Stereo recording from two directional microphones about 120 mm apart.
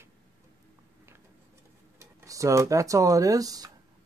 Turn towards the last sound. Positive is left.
turn(degrees=-30)  # may be behind; listen again after turning